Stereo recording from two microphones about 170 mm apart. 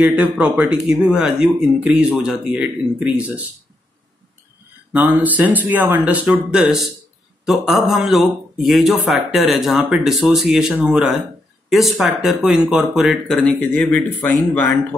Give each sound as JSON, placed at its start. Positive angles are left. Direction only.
{"t": 0.0, "sound": "speech", "side_deg": -5}
{"t": 4.9, "sound": "speech", "side_deg": -10}